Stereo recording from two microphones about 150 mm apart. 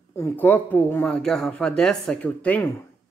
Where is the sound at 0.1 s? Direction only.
15° left (ahead or behind).